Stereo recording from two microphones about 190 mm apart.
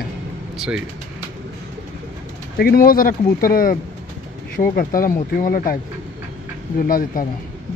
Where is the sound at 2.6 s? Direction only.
50° left (ahead or behind).